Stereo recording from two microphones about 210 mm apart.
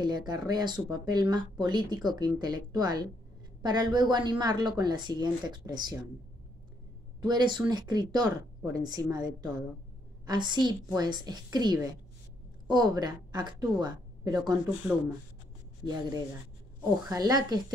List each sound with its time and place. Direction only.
0.0 s speech: 20° right (ahead or behind)
7.2 s a woman's voice: 20° right (ahead or behind)
15.8 s speech: 20° right (ahead or behind)